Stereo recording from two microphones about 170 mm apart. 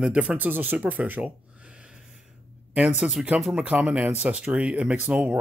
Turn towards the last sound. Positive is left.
turn(degrees=-10)  # may be behind; listen again after turning